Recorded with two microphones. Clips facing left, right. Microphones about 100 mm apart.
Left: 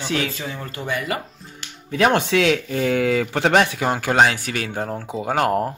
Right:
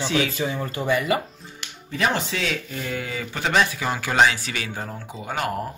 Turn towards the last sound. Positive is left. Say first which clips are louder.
# left 7 dB
turn(degrees=90)